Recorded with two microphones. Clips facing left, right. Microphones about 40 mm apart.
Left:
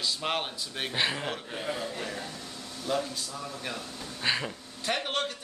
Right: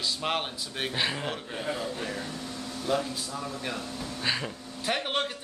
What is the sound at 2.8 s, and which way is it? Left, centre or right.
Speech, centre.